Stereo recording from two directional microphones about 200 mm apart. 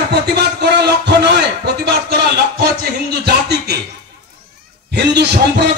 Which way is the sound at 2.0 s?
55° right (ahead or behind).